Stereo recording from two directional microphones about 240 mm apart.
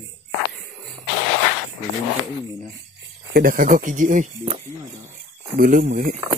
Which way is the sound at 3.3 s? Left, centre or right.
Right.